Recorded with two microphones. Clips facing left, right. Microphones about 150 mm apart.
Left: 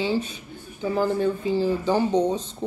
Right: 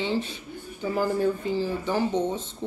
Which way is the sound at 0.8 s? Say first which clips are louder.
Left 2 dB; 5° right (ahead or behind).